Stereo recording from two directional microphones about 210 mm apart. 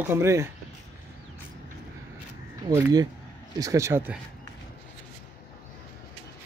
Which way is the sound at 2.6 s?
20° right (ahead or behind).